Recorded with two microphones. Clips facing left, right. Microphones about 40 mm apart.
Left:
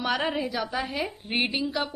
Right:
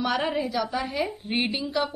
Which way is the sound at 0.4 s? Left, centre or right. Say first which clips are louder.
Right 2 dB; left.